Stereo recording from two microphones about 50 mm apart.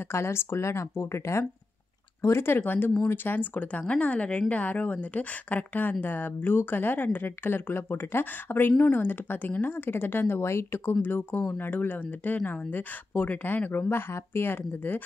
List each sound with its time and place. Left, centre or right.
0.1 s speech: left
2.2 s speech: left
2.6 s speech: left
3.3 s speech: left
10.4 s speech: left
11.0 s speech: left